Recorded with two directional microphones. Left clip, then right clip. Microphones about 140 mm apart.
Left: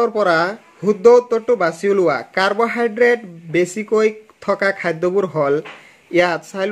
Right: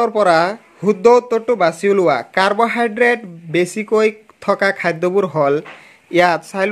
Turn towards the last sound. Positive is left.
turn(degrees=-35)  # may be behind; listen again after turning